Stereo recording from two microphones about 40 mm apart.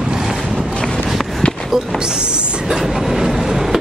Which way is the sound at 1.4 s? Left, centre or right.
Left.